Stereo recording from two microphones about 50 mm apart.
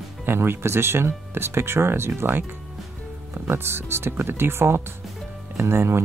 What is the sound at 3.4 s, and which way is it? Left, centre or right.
Speech, right.